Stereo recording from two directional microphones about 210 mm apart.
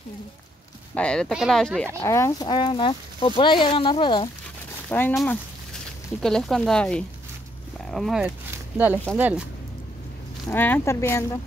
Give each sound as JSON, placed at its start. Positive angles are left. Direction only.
{"t": 0.9, "sound": "speech", "side_deg": 5}
{"t": 2.0, "sound": "speech", "side_deg": 15}
{"t": 4.8, "sound": "speech", "side_deg": 5}
{"t": 10.5, "sound": "speech", "side_deg": 10}